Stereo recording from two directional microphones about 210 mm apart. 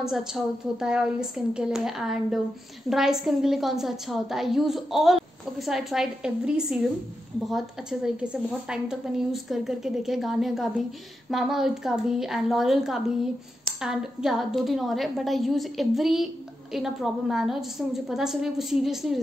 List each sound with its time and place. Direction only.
0.0 s a woman's voice: 5° right (ahead or behind)